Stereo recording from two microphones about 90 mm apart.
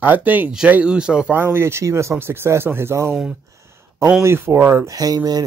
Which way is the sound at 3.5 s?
35° right (ahead or behind).